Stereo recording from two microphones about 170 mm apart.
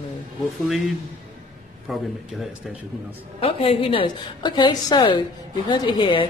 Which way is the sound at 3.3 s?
35° left (ahead or behind).